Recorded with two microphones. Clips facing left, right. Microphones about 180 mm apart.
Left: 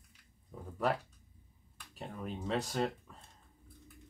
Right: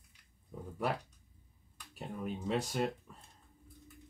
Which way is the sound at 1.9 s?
10° right (ahead or behind).